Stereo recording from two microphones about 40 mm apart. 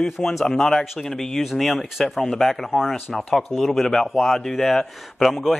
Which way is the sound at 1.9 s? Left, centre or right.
Centre.